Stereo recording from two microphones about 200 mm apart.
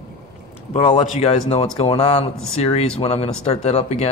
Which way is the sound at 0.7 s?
30° left (ahead or behind).